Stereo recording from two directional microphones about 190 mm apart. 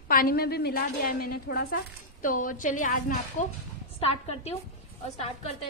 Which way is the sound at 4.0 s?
30° left (ahead or behind).